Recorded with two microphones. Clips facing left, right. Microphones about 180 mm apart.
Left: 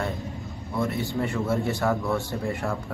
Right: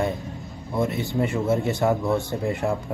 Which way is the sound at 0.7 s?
20° right (ahead or behind).